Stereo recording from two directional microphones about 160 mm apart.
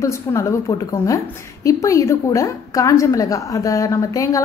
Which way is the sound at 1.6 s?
20° left (ahead or behind).